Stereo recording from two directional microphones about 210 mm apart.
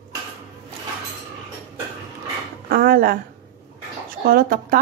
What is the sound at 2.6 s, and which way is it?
Speech, 45° right (ahead or behind).